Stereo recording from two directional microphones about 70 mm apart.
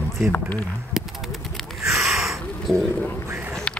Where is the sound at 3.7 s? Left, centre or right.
Centre.